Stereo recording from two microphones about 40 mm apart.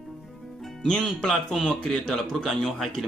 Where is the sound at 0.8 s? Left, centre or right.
Left.